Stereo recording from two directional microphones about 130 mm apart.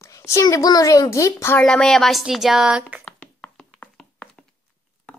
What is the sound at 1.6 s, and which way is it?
A woman's voice, 5° left (ahead or behind).